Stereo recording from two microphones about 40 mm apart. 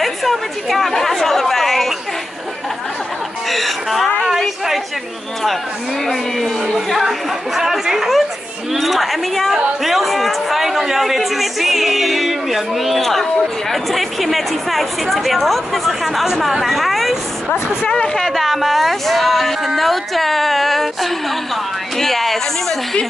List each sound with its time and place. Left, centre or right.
0.0 s chatter: centre
3.4 s a sound: centre
6.0 s a woman's voice: centre
17.5 s speech: left
18.3 s speech: centre